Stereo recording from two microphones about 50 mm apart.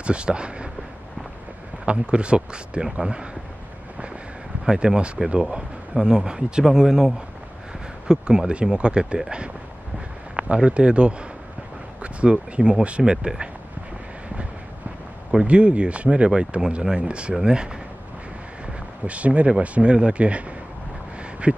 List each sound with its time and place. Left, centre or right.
0.0 s speech: right
1.9 s speech: right
4.6 s speech: centre
10.3 s speech: right
15.4 s speech: right
19.0 s speech: right